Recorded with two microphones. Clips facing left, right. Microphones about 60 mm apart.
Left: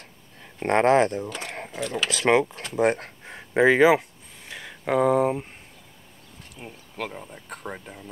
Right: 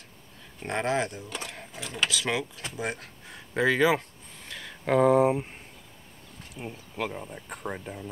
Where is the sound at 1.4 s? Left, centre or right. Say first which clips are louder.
Left 6 dB; left.